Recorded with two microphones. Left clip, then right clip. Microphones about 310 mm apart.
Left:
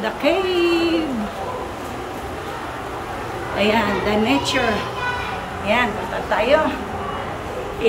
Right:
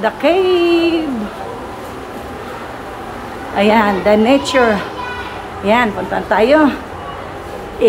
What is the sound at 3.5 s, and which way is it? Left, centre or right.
A woman's voice, centre.